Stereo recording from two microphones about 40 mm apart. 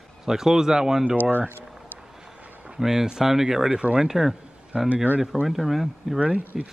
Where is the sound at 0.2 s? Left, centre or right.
Centre.